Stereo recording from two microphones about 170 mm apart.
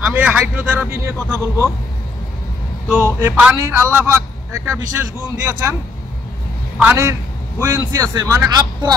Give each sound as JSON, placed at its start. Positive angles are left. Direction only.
{"t": 0.0, "sound": "a man's voice", "side_deg": -10}
{"t": 2.9, "sound": "a man's voice", "side_deg": -10}
{"t": 6.8, "sound": "a man's voice", "side_deg": -15}